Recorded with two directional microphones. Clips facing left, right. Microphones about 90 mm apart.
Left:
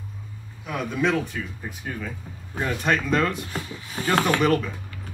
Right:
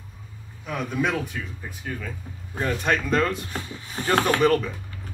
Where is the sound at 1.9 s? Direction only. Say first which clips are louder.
Even; 10° left (ahead or behind).